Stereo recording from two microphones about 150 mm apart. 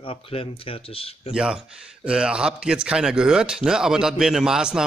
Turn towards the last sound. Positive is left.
turn(degrees=-5)  # may be behind; listen again after turning